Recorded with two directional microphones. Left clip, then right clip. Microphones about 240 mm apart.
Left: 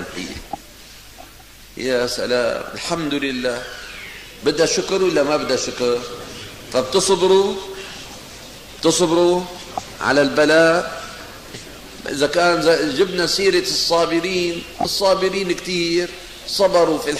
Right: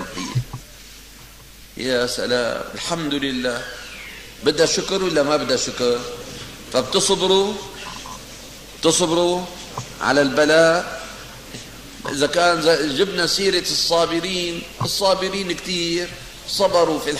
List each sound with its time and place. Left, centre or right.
1.8 s a man's voice: centre
8.8 s a man's voice: centre
12.1 s a man's voice: centre